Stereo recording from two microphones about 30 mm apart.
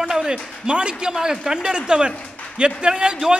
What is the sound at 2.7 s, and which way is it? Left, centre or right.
Speech, right.